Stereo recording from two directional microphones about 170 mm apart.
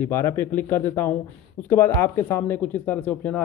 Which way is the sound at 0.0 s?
15° left (ahead or behind).